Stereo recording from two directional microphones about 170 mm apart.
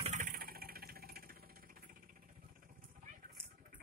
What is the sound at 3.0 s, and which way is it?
Vehicle, 50° right (ahead or behind).